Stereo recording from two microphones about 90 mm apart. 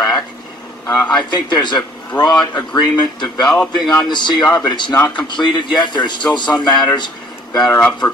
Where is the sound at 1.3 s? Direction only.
55° left (ahead or behind).